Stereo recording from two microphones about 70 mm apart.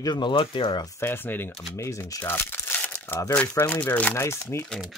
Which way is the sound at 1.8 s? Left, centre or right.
Left.